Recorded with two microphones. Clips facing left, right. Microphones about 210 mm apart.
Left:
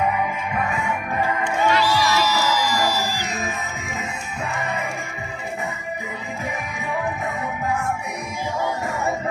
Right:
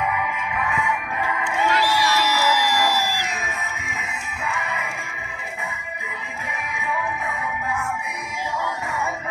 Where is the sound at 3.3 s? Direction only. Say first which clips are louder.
Left 3 dB; 40° left (ahead or behind).